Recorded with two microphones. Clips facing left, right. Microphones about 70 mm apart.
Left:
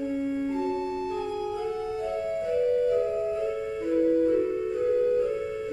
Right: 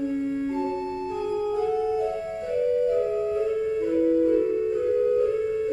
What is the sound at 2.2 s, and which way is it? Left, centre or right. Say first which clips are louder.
Keyboard: even; centre.